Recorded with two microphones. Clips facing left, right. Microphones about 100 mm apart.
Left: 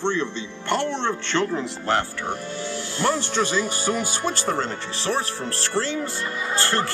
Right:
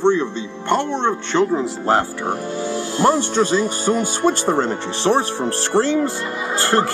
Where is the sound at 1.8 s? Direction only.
35° right (ahead or behind).